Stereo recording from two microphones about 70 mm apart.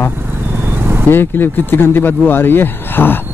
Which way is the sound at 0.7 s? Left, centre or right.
Right.